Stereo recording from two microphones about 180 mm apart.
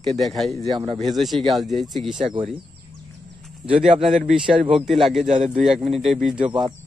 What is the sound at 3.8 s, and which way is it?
Speech, 35° right (ahead or behind).